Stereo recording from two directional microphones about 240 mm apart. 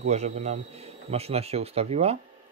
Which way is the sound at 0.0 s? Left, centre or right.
Right.